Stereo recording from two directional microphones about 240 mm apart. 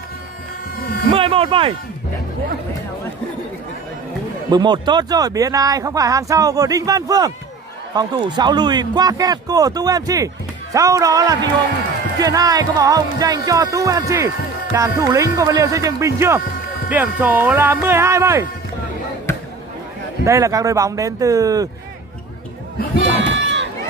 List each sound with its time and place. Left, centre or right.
1.1 s a sound: right
4.5 s speech: centre
20.2 s speech: centre
23.0 s crowd: right